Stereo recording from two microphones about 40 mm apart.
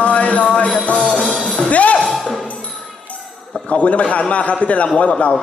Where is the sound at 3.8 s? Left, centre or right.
Left.